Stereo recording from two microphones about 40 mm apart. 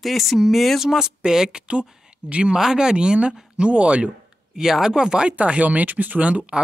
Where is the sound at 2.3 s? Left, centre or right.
Right.